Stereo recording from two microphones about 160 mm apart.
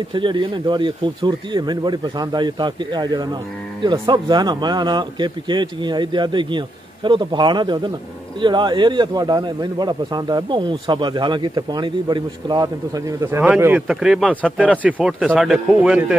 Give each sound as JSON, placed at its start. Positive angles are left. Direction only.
{"t": 0.1, "sound": "a man's voice", "side_deg": -30}
{"t": 13.4, "sound": "a man's voice", "side_deg": -10}